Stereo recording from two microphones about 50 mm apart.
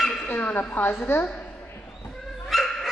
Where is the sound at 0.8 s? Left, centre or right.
Left.